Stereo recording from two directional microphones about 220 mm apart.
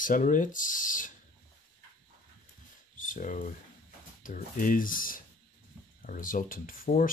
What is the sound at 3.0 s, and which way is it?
Speech, 35° left (ahead or behind).